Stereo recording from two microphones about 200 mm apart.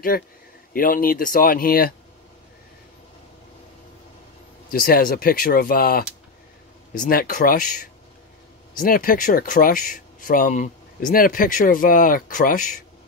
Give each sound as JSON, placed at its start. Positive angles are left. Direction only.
{"t": 0.1, "sound": "speech", "side_deg": 50}
{"t": 4.6, "sound": "speech", "side_deg": 50}